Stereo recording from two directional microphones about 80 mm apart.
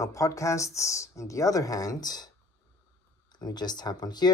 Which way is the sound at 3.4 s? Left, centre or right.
Left.